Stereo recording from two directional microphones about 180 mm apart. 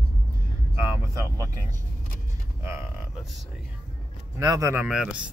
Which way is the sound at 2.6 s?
15° right (ahead or behind).